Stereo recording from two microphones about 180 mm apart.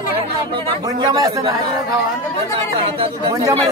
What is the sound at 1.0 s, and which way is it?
Speech, 20° right (ahead or behind).